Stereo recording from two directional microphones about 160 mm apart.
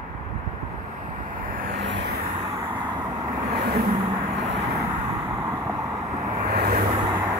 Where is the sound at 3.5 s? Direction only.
85° right.